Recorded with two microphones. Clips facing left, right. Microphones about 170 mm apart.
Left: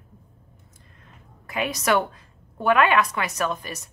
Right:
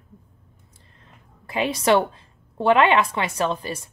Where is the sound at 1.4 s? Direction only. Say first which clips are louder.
Right 4 dB; 30° right (ahead or behind).